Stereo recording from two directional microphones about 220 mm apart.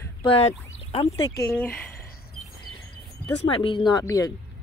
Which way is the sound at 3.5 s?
25° left (ahead or behind).